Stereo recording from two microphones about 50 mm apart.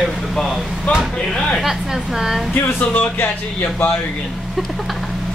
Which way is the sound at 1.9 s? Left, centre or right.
Centre.